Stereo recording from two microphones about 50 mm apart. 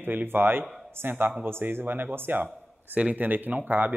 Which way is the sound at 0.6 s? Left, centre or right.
Centre.